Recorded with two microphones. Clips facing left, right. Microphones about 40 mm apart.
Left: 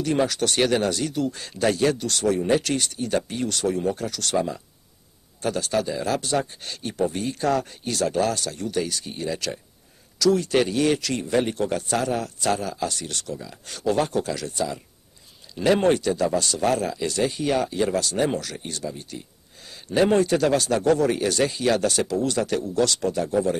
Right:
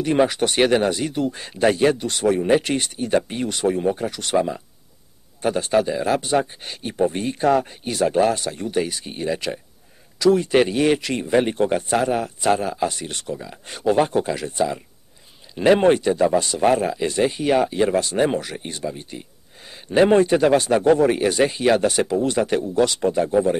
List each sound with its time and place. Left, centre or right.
0.0 s speech: right